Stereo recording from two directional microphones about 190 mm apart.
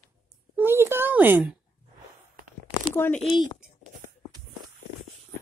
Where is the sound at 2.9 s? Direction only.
10° left (ahead or behind).